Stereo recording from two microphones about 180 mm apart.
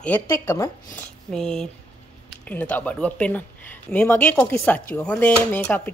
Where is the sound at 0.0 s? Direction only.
10° left (ahead or behind).